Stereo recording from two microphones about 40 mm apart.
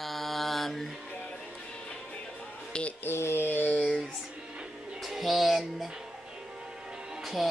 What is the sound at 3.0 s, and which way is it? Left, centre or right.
Mantra, left.